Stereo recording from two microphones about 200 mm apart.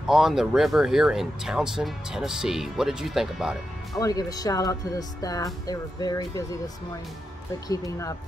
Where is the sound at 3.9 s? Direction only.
20° left (ahead or behind).